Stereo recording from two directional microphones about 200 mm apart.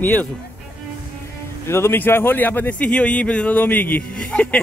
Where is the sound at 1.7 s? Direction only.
10° left (ahead or behind).